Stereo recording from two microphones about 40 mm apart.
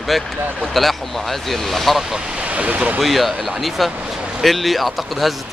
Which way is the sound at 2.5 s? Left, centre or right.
Right.